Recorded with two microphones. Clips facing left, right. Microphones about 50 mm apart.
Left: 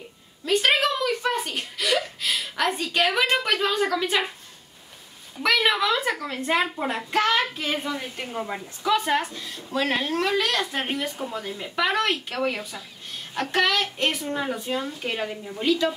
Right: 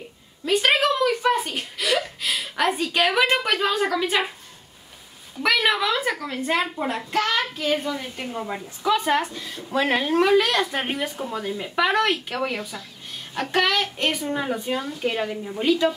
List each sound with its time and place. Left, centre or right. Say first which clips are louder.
0.5 s speech: right 2 dB; centre
5.4 s a woman's voice: right 1 dB; centre
9.6 s a woman's voice: right 3 dB; centre